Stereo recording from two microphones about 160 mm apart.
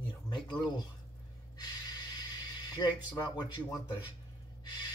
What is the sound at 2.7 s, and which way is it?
Speech, 25° left (ahead or behind).